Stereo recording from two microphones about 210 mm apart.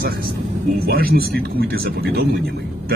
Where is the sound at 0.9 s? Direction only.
45° right (ahead or behind).